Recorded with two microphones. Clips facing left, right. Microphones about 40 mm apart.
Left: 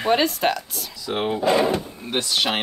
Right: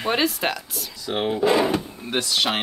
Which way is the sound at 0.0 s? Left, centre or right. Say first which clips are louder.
Left 3 dB; centre.